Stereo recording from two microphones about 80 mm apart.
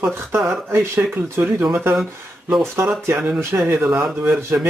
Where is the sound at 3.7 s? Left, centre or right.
Right.